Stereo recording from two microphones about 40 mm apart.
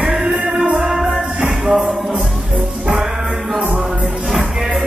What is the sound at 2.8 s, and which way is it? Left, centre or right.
Music, right.